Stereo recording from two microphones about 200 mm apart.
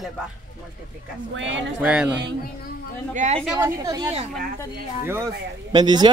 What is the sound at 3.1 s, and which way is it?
Speech, 35° right (ahead or behind).